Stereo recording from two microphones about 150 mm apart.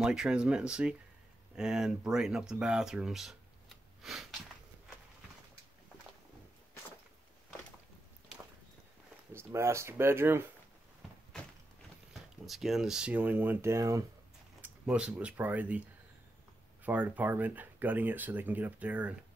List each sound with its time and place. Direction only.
0.0 s speech: 5° right (ahead or behind)
9.3 s speech: 15° right (ahead or behind)
12.1 s speech: centre (ahead or behind); by 14.0 s 20° right (ahead or behind)
14.6 s speech: 10° right (ahead or behind)
16.8 s speech: 10° right (ahead or behind)